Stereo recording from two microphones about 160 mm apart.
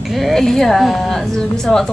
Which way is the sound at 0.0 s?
Centre (ahead or behind).